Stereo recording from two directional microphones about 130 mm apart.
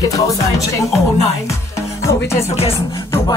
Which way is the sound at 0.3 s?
25° left (ahead or behind).